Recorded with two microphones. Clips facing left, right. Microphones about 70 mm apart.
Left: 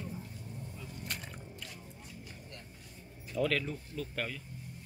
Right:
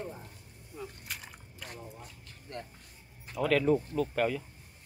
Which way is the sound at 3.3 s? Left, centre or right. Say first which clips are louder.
Right 6 dB; centre.